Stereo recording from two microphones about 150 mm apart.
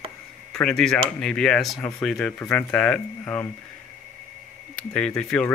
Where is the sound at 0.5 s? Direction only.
5° left (ahead or behind).